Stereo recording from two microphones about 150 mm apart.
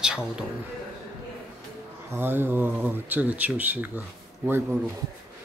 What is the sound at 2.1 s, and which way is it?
Speech, 15° right (ahead or behind).